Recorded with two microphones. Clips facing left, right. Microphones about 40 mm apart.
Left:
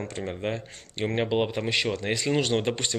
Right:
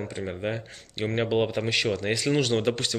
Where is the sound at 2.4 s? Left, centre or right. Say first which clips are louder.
Right 1 dB; centre.